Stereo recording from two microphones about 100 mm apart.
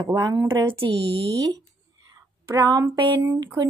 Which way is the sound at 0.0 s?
40° right (ahead or behind).